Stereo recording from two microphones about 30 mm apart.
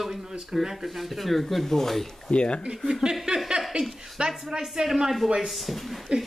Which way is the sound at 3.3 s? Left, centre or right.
Right.